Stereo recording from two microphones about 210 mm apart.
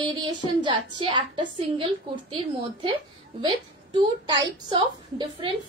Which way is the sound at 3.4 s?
25° right (ahead or behind).